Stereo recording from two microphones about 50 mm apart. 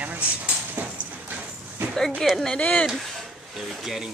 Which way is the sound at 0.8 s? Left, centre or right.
Right.